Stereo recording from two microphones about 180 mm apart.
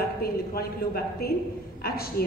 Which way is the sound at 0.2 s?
55° left (ahead or behind).